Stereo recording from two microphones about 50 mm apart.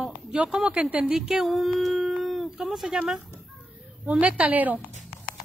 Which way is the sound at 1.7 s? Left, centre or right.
Centre.